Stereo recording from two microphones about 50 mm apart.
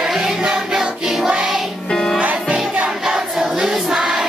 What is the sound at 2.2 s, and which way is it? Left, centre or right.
Music, right.